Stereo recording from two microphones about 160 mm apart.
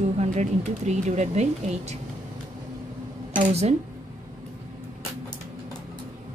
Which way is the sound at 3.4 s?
40° right (ahead or behind).